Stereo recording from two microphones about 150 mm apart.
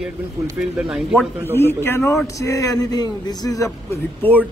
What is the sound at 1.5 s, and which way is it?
Speech, 15° left (ahead or behind).